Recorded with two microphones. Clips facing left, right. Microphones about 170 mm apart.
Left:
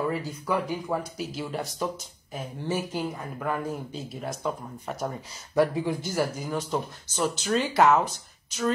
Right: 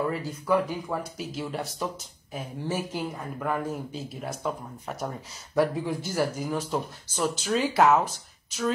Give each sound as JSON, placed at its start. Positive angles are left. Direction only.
{"t": 0.0, "sound": "speech", "side_deg": 0}